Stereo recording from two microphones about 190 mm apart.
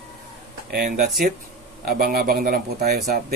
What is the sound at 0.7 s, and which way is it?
Speech, 55° right (ahead or behind).